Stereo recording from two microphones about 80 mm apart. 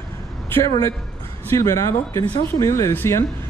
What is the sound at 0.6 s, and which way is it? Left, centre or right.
Speech, left.